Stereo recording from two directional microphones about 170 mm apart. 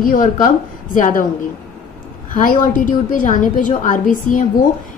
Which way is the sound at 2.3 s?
50° left (ahead or behind).